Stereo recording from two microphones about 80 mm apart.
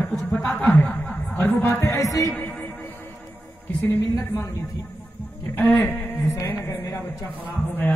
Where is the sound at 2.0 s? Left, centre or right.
Left.